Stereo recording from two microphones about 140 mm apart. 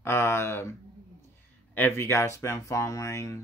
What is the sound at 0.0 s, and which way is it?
Speech, 15° left (ahead or behind).